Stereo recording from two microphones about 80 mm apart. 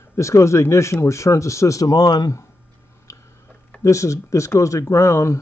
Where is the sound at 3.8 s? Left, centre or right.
Left.